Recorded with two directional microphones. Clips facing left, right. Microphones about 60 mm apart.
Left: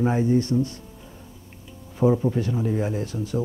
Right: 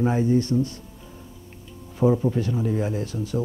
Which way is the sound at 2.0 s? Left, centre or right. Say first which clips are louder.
Even; left.